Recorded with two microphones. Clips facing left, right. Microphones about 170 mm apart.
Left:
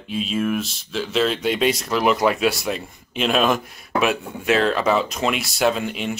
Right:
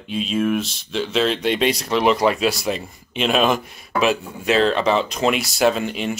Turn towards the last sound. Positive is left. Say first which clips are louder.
# right 2 dB
turn(degrees=0)  # may be behind; listen again after turning